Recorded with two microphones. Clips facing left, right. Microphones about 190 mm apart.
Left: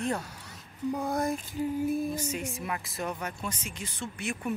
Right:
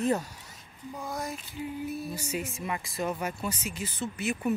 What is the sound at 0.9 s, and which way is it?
Lullaby, 65° left (ahead or behind).